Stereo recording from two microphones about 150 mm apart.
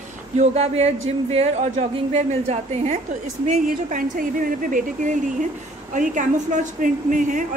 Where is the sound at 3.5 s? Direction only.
65° right (ahead or behind).